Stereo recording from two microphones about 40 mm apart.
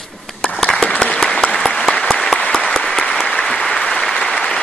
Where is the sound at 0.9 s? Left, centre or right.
Left.